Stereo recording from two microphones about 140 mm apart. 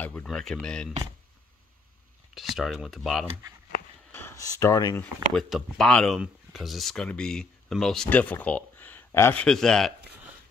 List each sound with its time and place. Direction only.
0.0 s speech: 10° left (ahead or behind)
2.3 s speech: centre (ahead or behind)
4.1 s speech: 15° left (ahead or behind)
5.3 s speech: centre (ahead or behind)